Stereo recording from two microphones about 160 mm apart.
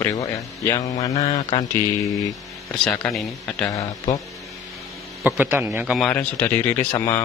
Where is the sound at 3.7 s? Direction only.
20° left (ahead or behind).